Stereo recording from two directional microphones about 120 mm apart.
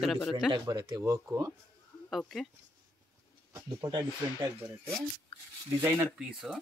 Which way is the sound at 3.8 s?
35° right (ahead or behind).